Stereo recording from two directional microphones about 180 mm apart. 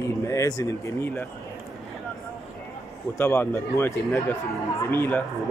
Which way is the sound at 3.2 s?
15° left (ahead or behind).